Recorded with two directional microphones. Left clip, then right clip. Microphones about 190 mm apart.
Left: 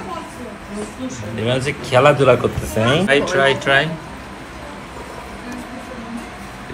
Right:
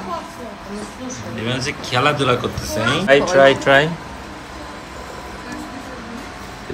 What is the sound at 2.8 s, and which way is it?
Speech, 35° right (ahead or behind).